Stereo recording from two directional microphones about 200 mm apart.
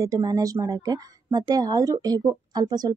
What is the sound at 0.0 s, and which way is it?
A woman's voice, 20° right (ahead or behind).